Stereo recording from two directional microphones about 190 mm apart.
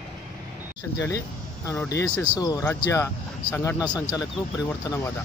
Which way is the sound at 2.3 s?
20° left (ahead or behind).